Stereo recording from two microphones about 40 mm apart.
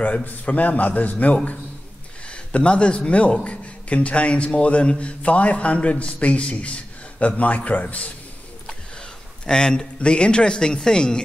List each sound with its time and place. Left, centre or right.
0.0 s a man's voice: left
9.5 s speech: centre